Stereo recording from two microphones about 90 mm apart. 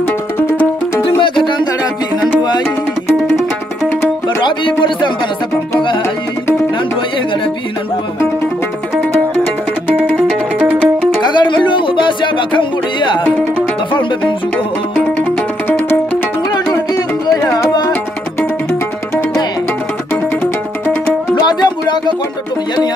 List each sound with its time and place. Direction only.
1.0 s music: 65° left (ahead or behind)
4.4 s a sound: 60° left (ahead or behind)
11.3 s music: 60° left (ahead or behind)
21.4 s music: 50° left (ahead or behind)